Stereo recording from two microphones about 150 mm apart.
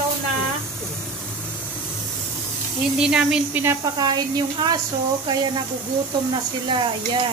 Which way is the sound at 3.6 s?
25° right (ahead or behind).